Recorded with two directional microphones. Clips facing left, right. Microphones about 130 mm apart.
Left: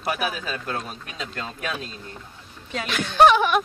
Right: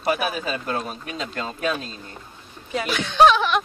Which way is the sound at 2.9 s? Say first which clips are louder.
Even; 10° left (ahead or behind).